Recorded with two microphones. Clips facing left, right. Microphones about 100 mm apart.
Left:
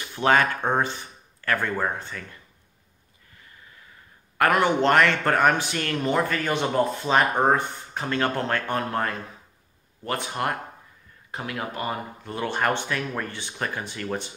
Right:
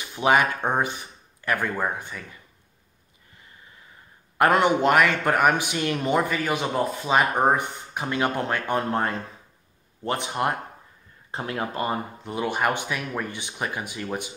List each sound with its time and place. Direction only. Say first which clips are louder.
0.0 s speech: even; 15° right (ahead or behind)
4.4 s speech: right 1 dB; 20° right (ahead or behind)
11.3 s speech: right 3 dB; 30° right (ahead or behind)
12.3 s speech: even; 10° right (ahead or behind)